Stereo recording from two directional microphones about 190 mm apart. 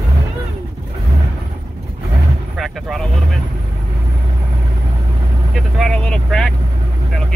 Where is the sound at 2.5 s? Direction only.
Centre (ahead or behind).